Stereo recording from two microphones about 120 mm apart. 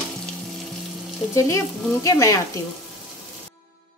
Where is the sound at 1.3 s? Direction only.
25° left (ahead or behind).